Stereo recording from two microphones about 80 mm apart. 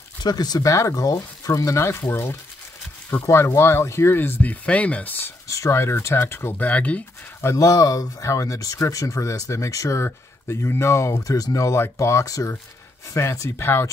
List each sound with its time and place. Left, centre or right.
0.2 s speech: left
5.5 s speech: left; by 7.0 s centre
7.5 s speech: left